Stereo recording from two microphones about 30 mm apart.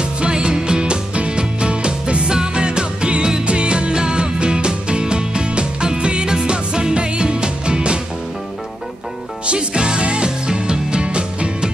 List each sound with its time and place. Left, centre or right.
0.2 s music: right
9.5 s music: right